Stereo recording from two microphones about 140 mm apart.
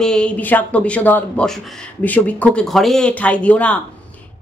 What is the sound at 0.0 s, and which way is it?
Speech, 5° left (ahead or behind).